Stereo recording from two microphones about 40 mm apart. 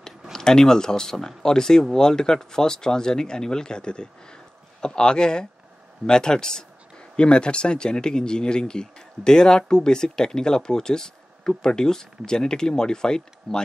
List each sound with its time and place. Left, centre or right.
0.3 s speech: centre